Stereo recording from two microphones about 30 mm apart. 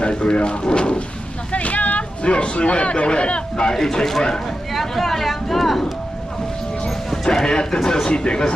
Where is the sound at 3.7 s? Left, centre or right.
Centre.